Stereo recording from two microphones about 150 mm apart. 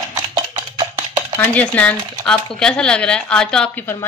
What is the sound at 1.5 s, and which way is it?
Speech, 10° left (ahead or behind).